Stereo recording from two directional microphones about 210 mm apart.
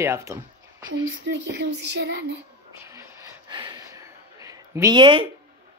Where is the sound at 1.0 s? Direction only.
60° right (ahead or behind).